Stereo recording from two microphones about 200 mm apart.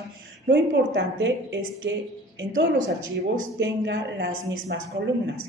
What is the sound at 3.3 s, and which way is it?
A woman's voice, 60° right (ahead or behind).